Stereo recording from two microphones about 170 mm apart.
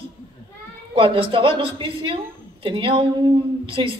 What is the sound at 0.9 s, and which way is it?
A man's voice, 30° right (ahead or behind).